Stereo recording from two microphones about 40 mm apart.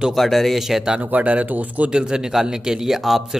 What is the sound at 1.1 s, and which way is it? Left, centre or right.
Speech, right.